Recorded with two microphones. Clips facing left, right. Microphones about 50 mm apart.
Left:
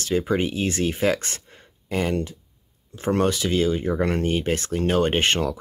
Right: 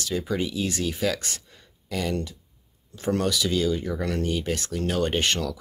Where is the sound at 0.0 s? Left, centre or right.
Left.